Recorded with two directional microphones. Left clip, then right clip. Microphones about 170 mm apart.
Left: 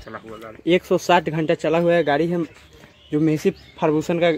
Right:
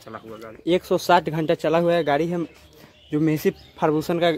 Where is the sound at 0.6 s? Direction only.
5° left (ahead or behind).